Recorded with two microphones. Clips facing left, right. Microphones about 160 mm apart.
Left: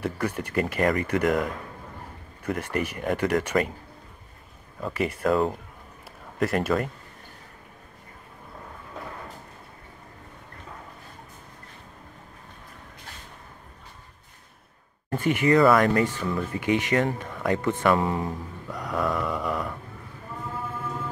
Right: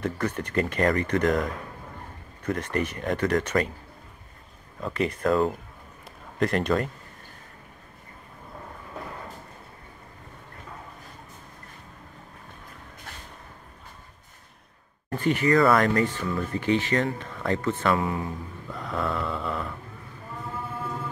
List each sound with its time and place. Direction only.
0.0 s speech: 10° left (ahead or behind)
4.7 s speech: 5° left (ahead or behind)
15.1 s speech: 15° left (ahead or behind)
15.6 s speech: centre (ahead or behind)
15.9 s speech: 15° left (ahead or behind)
17.9 s speech: 25° left (ahead or behind)
18.7 s a sound: 10° left (ahead or behind)